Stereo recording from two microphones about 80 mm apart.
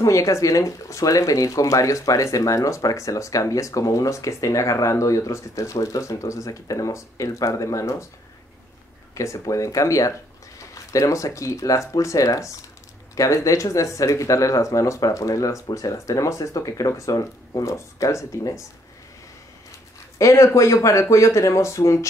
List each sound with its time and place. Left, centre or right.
0.0 s speech: left
9.1 s speech: left
20.2 s speech: left